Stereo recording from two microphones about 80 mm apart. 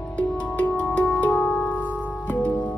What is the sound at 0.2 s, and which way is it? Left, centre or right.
Music, centre.